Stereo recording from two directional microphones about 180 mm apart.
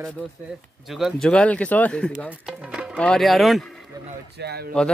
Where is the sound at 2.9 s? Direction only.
5° left (ahead or behind).